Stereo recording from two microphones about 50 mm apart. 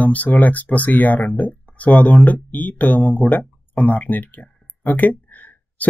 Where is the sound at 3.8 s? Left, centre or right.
Left.